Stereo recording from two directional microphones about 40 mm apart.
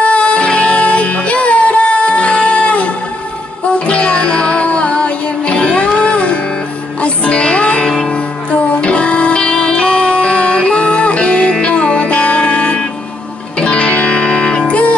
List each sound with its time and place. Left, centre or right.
0.0 s music: left